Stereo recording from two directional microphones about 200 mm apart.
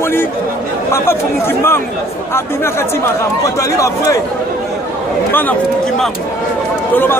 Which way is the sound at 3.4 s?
15° left (ahead or behind).